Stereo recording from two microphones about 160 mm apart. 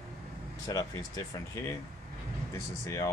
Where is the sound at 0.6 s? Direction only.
20° left (ahead or behind).